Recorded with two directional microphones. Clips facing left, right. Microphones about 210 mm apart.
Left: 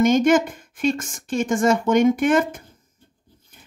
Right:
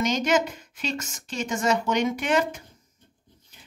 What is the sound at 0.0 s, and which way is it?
Speech, 50° left (ahead or behind).